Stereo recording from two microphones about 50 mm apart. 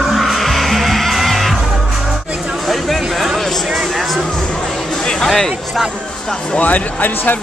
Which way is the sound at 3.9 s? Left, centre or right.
Centre.